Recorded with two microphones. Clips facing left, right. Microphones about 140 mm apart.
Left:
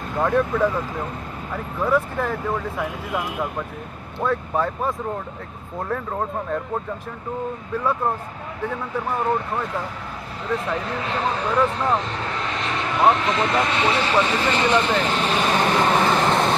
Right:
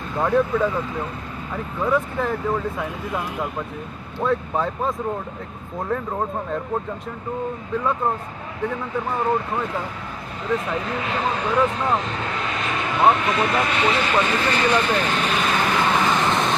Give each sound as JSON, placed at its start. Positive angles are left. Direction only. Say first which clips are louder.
{"t": 0.2, "sound": "speech", "louder": "even", "side_deg": 0}
{"t": 4.2, "sound": "speech", "louder": "even", "side_deg": 0}
{"t": 7.7, "sound": "speech", "louder": "even", "side_deg": 5}
{"t": 13.7, "sound": "speech", "louder": "even", "side_deg": 25}
{"t": 15.0, "sound": "vehicle", "louder": "left 1 dB", "side_deg": 30}